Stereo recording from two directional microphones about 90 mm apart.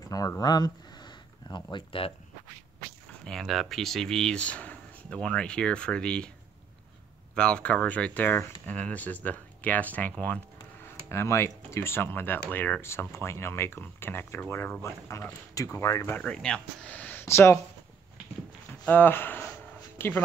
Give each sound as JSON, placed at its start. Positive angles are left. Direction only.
{"t": 0.4, "sound": "speech", "side_deg": 50}
{"t": 1.5, "sound": "speech", "side_deg": 60}
{"t": 3.3, "sound": "speech", "side_deg": 0}
{"t": 7.3, "sound": "speech", "side_deg": 10}
{"t": 11.1, "sound": "speech", "side_deg": 30}
{"t": 13.1, "sound": "speech", "side_deg": 30}
{"t": 16.1, "sound": "speech", "side_deg": 15}
{"t": 17.3, "sound": "speech", "side_deg": 30}
{"t": 18.9, "sound": "speech", "side_deg": 20}